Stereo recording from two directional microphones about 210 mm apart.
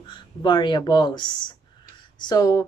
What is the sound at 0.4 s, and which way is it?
Speech, 20° left (ahead or behind).